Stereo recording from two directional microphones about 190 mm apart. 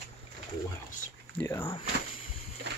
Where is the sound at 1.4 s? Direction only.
15° left (ahead or behind).